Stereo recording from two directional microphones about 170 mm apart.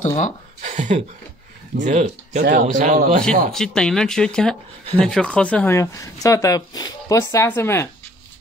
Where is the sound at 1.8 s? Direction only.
45° right (ahead or behind).